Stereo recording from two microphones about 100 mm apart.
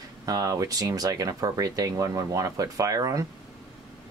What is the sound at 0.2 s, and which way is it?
Speech, 35° right (ahead or behind).